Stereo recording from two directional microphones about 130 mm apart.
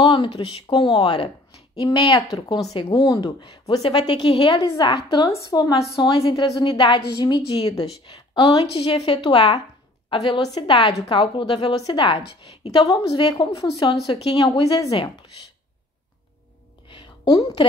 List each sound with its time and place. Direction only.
0.0 s a woman's voice: 40° left (ahead or behind)
6.1 s a woman's voice: 45° left (ahead or behind)
7.8 s a woman's voice: 45° left (ahead or behind)
13.1 s a woman's voice: 30° left (ahead or behind)
16.9 s a sound: 40° left (ahead or behind)